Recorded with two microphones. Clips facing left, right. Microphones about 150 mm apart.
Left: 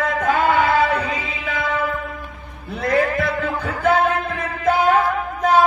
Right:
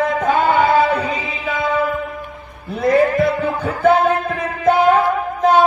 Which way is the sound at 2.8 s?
25° right (ahead or behind).